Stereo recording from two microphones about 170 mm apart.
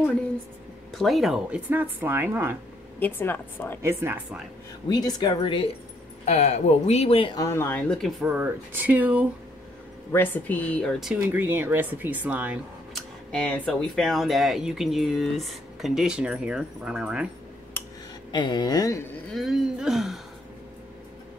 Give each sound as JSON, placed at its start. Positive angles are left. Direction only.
{"t": 0.9, "sound": "speech", "side_deg": 0}
{"t": 3.0, "sound": "a woman's voice", "side_deg": 10}
{"t": 3.8, "sound": "speech", "side_deg": -15}
{"t": 4.8, "sound": "speech", "side_deg": 25}
{"t": 7.3, "sound": "a woman's voice", "side_deg": 15}
{"t": 8.2, "sound": "speech", "side_deg": -10}
{"t": 10.1, "sound": "a woman's voice", "side_deg": 10}
{"t": 11.0, "sound": "speech", "side_deg": -5}
{"t": 13.3, "sound": "speech", "side_deg": 5}
{"t": 17.8, "sound": "a sound", "side_deg": 10}
{"t": 18.3, "sound": "speech", "side_deg": 25}
{"t": 19.3, "sound": "speech", "side_deg": 0}